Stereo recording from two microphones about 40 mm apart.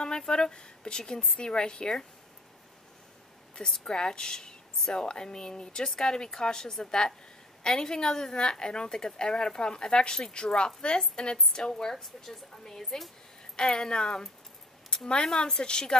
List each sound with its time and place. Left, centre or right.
0.2 s speech: centre
3.8 s a woman's voice: centre
14.9 s a sound: centre
15.2 s a woman's voice: centre